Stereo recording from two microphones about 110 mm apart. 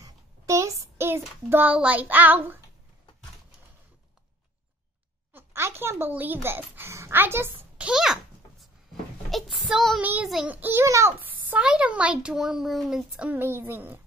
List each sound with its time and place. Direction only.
0.0 s a sound: 30° right (ahead or behind)
0.9 s a child's voice: 20° right (ahead or behind)
5.3 s speech: 20° right (ahead or behind); by 8.6 s 5° right (ahead or behind)
9.6 s child singing: centre (ahead or behind)
10.5 s a child's voice: 20° right (ahead or behind)
13.4 s a child's voice: 20° right (ahead or behind)